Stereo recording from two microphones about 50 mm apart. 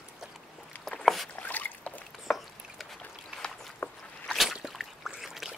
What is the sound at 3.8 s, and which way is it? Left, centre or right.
Walk, left.